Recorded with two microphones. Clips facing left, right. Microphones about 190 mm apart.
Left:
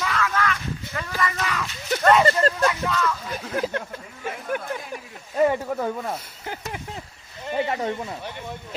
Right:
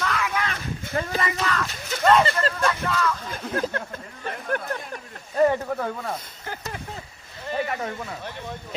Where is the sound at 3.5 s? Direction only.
10° left (ahead or behind).